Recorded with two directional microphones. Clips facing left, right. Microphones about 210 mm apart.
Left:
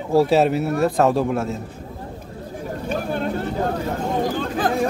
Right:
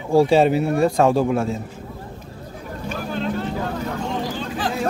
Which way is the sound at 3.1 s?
50° left (ahead or behind).